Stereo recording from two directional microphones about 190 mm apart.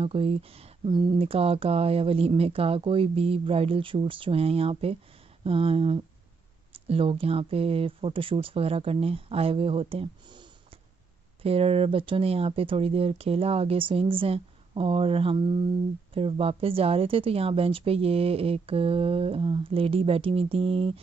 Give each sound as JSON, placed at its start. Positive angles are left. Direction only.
{"t": 0.0, "sound": "a woman's voice", "side_deg": -30}
{"t": 11.4, "sound": "a woman's voice", "side_deg": -30}